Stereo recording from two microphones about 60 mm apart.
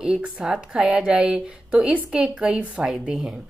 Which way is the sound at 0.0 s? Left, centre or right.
Centre.